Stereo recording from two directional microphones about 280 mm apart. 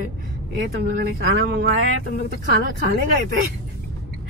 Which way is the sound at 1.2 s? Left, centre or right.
Right.